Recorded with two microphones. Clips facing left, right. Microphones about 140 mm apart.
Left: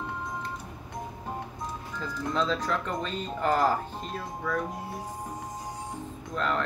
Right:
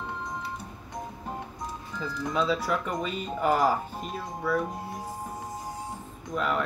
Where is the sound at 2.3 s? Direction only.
10° right (ahead or behind).